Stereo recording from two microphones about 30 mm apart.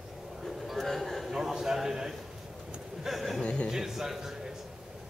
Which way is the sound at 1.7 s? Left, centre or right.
Centre.